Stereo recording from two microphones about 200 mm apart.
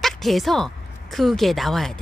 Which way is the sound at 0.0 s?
Centre (ahead or behind).